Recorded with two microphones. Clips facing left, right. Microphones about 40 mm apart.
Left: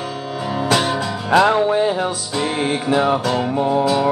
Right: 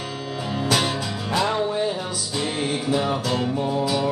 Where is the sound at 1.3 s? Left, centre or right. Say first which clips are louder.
Left 9 dB; left.